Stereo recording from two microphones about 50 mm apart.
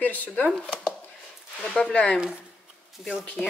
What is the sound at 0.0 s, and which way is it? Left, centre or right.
Speech, left.